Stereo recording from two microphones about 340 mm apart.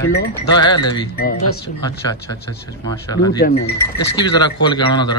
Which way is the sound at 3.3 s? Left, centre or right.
Left.